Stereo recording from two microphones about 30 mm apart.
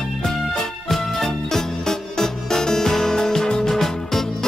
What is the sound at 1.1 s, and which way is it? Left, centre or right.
Music, centre.